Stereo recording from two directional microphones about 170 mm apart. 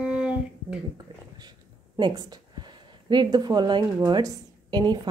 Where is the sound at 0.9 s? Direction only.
25° right (ahead or behind).